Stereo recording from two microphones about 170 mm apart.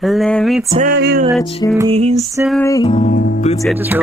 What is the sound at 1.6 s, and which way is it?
Music, 20° left (ahead or behind).